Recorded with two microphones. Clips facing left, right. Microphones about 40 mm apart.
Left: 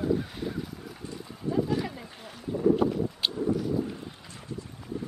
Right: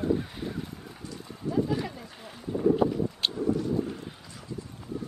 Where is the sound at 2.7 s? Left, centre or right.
Centre.